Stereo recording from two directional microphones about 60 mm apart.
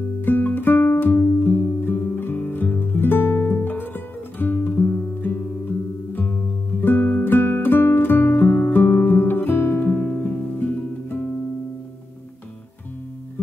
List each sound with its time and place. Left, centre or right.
0.2 s music: left
10.0 s music: left